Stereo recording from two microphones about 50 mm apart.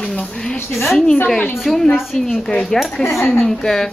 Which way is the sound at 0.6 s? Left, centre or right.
Left.